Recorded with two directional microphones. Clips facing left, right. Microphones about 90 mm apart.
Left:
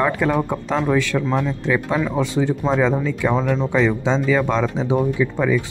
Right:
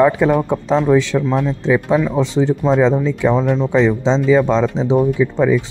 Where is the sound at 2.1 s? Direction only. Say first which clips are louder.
Right 4 dB; 20° right (ahead or behind).